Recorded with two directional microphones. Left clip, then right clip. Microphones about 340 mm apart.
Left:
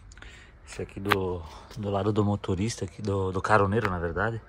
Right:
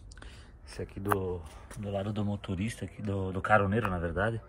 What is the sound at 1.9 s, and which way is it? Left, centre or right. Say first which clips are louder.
Speech: left 8 dB; left.